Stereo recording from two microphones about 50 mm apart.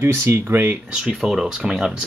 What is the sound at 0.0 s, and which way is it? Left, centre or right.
Speech, right.